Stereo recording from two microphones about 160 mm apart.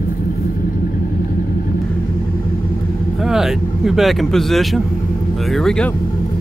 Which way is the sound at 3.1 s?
5° right (ahead or behind).